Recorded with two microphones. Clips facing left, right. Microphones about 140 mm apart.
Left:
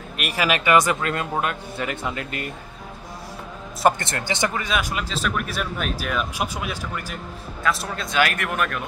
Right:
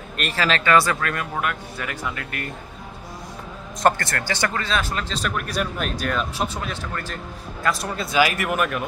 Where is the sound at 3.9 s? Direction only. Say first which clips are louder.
Even; 20° left (ahead or behind); by 8.8 s 5° right (ahead or behind).